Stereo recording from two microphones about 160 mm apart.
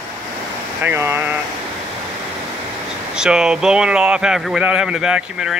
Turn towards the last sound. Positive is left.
turn(degrees=-5)  # may be behind; listen again after turning